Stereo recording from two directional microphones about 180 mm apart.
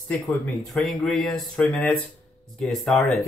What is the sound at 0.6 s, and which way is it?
Speech, 5° left (ahead or behind).